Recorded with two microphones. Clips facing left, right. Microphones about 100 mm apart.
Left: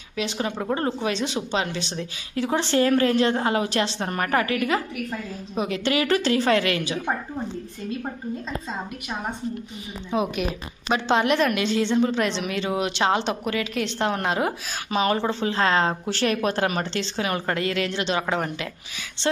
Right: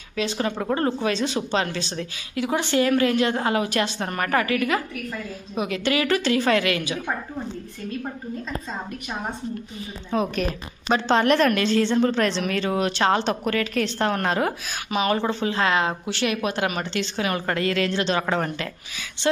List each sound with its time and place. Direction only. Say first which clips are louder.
0.2 s a woman's voice: right 2 dB; 20° left (ahead or behind)
2.3 s a woman's voice: even; 35° left (ahead or behind)
10.1 s a woman's voice: right 1 dB; 10° left (ahead or behind)